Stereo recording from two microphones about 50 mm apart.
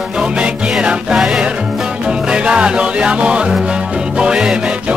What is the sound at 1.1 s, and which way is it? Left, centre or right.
Music, centre.